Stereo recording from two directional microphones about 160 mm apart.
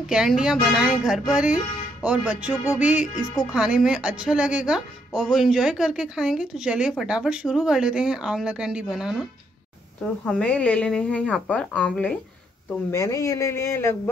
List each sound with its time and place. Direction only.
0.1 s speech: 5° right (ahead or behind)
2.0 s music: 10° right (ahead or behind)
3.5 s speech: 5° right (ahead or behind)
10.2 s speech: 10° left (ahead or behind)
12.9 s speech: 20° left (ahead or behind)